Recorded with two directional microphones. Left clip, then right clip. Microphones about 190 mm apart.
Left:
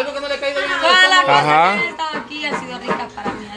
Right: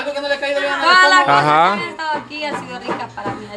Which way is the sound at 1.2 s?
20° right (ahead or behind).